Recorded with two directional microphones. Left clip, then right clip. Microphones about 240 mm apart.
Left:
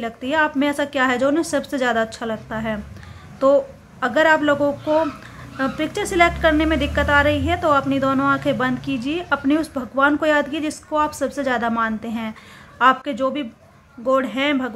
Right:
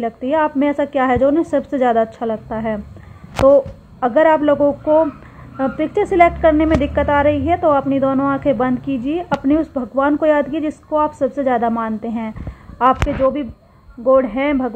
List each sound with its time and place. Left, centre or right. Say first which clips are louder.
0.0 s a woman's voice: right 3 dB; left